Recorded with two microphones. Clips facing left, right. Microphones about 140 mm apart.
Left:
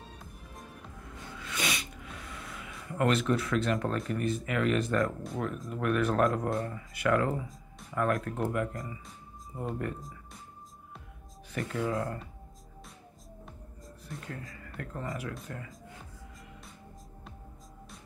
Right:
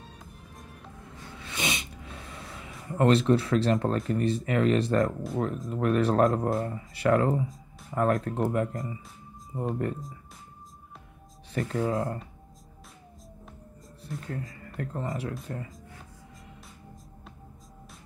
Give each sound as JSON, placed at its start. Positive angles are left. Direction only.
{"t": 1.3, "sound": "a sound", "side_deg": -25}
{"t": 4.1, "sound": "speech", "side_deg": -30}
{"t": 11.5, "sound": "speech", "side_deg": -30}
{"t": 14.3, "sound": "speech", "side_deg": -30}